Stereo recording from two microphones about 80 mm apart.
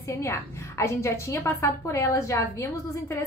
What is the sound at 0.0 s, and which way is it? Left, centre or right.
A woman's voice, left.